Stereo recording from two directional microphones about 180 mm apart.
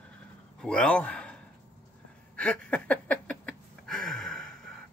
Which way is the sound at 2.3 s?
5° left (ahead or behind).